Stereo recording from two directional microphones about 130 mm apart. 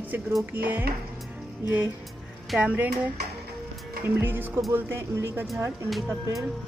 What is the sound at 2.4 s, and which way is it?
Music, 10° right (ahead or behind).